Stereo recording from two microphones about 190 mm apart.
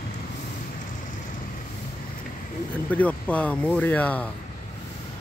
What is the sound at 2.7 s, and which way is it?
Speech, 5° left (ahead or behind).